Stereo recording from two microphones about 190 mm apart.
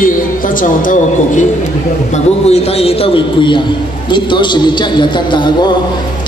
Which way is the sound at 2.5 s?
30° left (ahead or behind).